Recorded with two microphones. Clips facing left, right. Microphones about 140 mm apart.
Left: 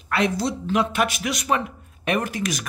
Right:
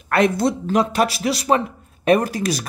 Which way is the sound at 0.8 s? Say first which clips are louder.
Right 4 dB; 35° right (ahead or behind).